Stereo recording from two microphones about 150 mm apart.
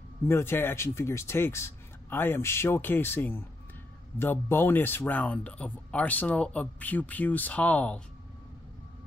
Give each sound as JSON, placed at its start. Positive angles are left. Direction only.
{"t": 0.3, "sound": "speech", "side_deg": 15}